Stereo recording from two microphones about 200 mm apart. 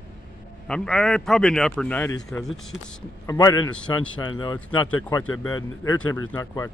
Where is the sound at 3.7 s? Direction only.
5° left (ahead or behind).